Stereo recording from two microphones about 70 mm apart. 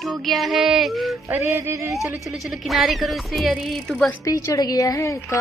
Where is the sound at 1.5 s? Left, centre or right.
Right.